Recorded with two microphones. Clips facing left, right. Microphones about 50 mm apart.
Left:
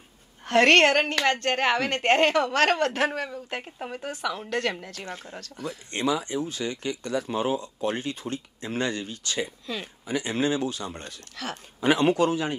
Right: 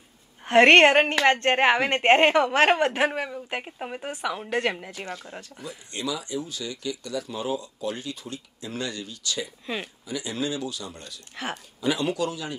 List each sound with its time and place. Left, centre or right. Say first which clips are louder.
0.5 s a woman's voice: right 3 dB; right
5.2 s a woman's voice: even; right
5.6 s speech: left 5 dB; left
11.3 s a woman's voice: right 2 dB; right
11.8 s speech: left 5 dB; left